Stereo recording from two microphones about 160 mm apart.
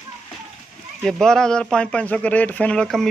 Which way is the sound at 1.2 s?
5° left (ahead or behind).